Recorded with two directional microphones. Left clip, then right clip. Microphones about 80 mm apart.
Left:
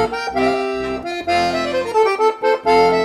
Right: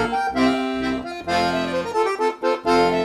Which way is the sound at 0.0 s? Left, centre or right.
Left.